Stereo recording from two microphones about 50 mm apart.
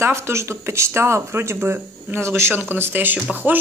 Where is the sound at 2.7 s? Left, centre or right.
Right.